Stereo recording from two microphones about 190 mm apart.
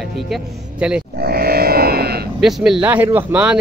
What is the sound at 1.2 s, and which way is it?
Livestock, 55° right (ahead or behind).